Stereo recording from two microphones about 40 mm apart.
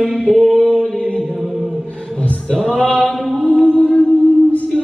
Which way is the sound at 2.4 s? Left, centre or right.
Left.